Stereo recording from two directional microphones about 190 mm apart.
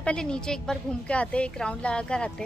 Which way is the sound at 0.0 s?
5° left (ahead or behind).